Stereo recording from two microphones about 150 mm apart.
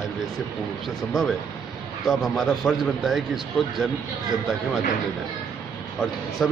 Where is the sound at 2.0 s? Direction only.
Centre (ahead or behind).